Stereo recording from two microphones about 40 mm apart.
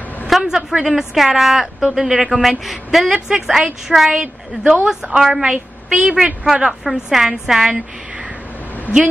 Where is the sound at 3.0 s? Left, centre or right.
Centre.